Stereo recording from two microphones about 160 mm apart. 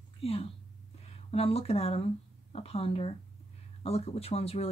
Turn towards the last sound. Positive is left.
turn(degrees=40)  # may be behind; listen again after turning